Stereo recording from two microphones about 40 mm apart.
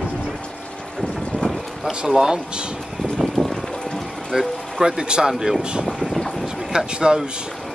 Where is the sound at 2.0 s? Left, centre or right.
Centre.